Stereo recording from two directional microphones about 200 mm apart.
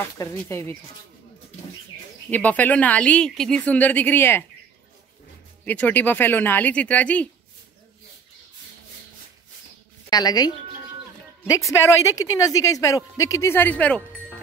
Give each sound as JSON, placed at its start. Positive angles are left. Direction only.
{"t": 0.0, "sound": "speech", "side_deg": 10}
{"t": 2.3, "sound": "speech", "side_deg": 10}
{"t": 5.7, "sound": "speech", "side_deg": 10}
{"t": 10.0, "sound": "a woman's voice", "side_deg": 20}
{"t": 11.8, "sound": "speech", "side_deg": 15}